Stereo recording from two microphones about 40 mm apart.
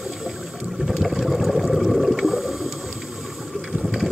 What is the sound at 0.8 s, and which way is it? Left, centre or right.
Vehicle, centre.